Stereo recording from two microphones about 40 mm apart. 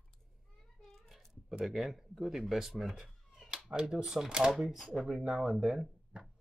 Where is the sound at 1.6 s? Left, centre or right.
Centre.